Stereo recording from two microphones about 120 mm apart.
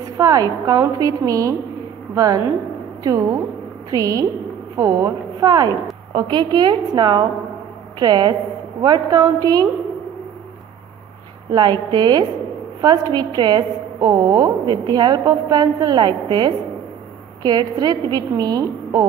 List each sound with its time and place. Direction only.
0.2 s a woman's voice: 30° right (ahead or behind)
11.5 s a woman's voice: 35° right (ahead or behind)